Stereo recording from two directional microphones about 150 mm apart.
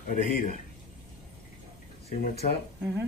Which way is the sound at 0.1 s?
60° left (ahead or behind).